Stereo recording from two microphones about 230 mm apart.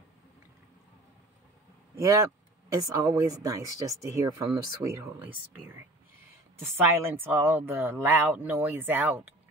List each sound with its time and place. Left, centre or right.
2.0 s speech: centre
6.8 s speech: centre